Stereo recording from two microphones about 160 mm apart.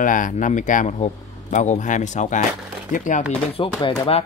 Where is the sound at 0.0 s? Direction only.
55° left (ahead or behind).